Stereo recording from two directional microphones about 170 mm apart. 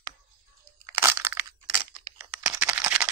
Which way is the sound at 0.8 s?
15° right (ahead or behind).